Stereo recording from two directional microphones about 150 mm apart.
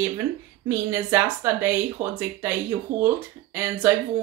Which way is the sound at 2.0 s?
60° right (ahead or behind).